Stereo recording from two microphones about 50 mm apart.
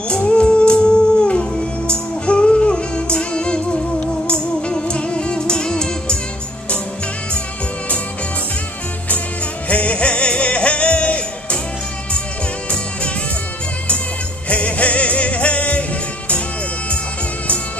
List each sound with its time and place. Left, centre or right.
0.1 s music: centre
9.7 s music: left
14.5 s music: left